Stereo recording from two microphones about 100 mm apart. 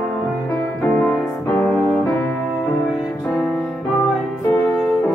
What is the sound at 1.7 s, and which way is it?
Music, 10° right (ahead or behind).